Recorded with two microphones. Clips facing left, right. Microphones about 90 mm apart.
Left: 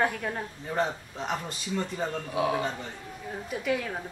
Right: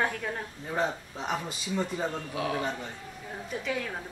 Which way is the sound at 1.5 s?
5° right (ahead or behind).